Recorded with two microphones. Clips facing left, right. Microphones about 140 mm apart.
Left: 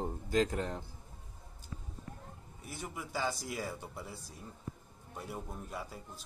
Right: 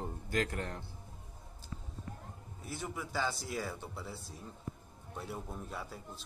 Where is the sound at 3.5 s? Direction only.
10° left (ahead or behind).